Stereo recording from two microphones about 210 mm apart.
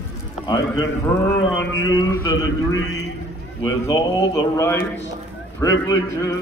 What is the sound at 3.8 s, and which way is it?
A man's voice, 15° left (ahead or behind).